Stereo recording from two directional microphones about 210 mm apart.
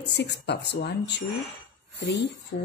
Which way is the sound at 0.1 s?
55° left (ahead or behind).